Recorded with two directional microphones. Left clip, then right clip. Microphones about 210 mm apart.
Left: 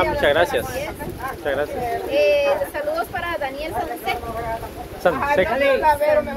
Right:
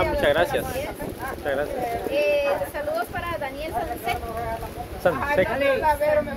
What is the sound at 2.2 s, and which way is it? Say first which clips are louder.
Speech: left 5 dB; 20° left (ahead or behind).